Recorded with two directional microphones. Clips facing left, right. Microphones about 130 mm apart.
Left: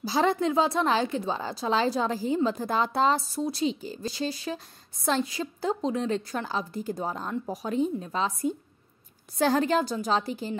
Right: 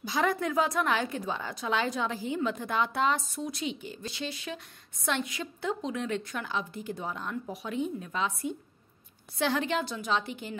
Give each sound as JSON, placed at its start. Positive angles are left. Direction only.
{"t": 0.0, "sound": "a woman's voice", "side_deg": 30}